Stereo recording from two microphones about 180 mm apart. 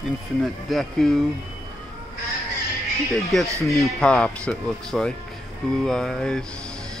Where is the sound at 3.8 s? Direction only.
5° left (ahead or behind).